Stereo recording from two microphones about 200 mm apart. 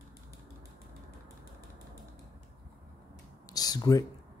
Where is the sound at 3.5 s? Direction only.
20° left (ahead or behind).